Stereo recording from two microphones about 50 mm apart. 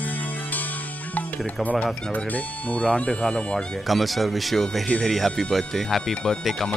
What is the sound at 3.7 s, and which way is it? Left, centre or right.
Speech, centre.